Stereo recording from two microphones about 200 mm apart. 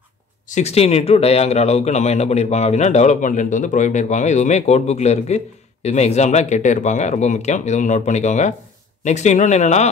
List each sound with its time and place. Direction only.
0.5 s speech: 35° left (ahead or behind)